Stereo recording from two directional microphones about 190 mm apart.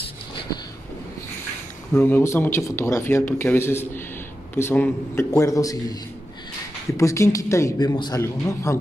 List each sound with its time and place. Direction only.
2.0 s speech: 10° left (ahead or behind)
7.0 s speech: 15° left (ahead or behind)